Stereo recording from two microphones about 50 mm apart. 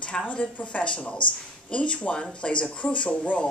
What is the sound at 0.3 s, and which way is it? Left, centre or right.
A woman's voice, left.